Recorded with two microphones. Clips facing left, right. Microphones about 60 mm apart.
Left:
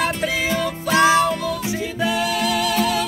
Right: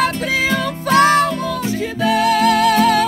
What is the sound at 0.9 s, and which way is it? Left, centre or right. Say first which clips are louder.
Music: right 3 dB; right.